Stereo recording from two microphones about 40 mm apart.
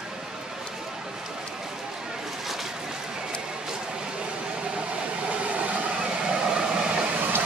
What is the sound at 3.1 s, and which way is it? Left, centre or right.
Vehicle, centre.